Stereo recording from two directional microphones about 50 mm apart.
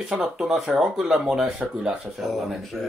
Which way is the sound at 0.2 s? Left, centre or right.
Centre.